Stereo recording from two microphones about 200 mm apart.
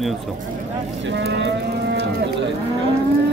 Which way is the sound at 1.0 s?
60° right (ahead or behind).